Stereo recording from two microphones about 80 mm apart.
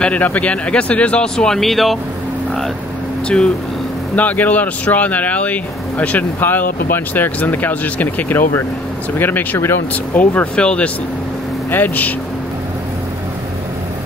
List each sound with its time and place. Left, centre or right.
0.0 s speech: centre
4.1 s speech: centre